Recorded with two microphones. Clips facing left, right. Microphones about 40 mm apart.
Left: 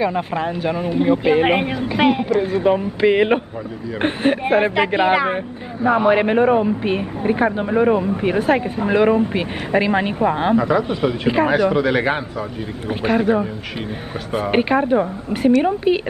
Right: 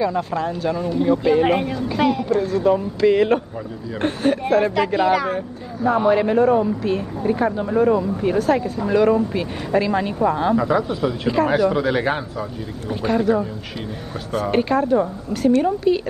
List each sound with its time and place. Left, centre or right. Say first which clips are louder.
0.0 s speech: left 1 dB; left
11.7 s speech: left 2 dB; centre
13.2 s speech: left 1 dB; left